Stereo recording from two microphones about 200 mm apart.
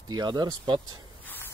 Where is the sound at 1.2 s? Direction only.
10° left (ahead or behind).